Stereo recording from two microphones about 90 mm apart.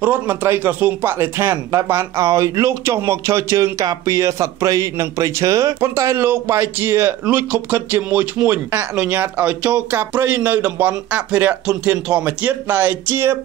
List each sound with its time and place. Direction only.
0.0 s a man's voice: 20° right (ahead or behind)
6.2 s speech: 25° right (ahead or behind)